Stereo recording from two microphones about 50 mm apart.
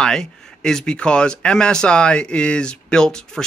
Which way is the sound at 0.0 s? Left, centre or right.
Centre.